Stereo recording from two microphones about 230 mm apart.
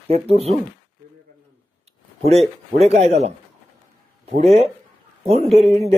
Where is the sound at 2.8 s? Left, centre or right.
Right.